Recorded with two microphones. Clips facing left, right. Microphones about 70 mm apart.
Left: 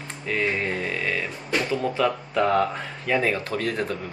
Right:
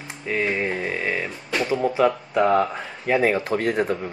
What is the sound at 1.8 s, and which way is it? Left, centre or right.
Speech, centre.